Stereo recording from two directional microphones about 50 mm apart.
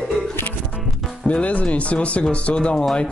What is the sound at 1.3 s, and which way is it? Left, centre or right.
Speech, left.